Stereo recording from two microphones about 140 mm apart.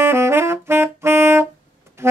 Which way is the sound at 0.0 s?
15° right (ahead or behind).